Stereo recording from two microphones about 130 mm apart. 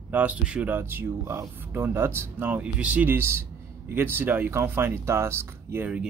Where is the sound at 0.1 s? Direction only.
10° right (ahead or behind).